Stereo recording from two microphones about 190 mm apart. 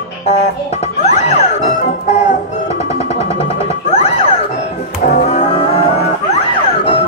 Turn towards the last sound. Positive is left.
turn(degrees=30)  # may be behind; listen again after turning